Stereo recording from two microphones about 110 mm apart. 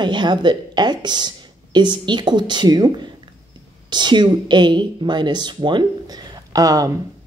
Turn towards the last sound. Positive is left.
turn(degrees=-35)  # may be behind; listen again after turning